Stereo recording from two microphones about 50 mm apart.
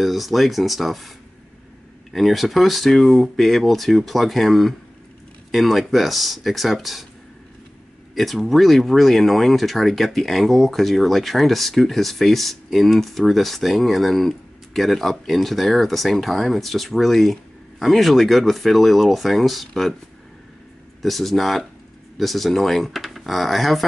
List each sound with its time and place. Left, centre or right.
0.0 s speech: centre
2.1 s speech: centre
8.1 s speech: centre
21.0 s speech: centre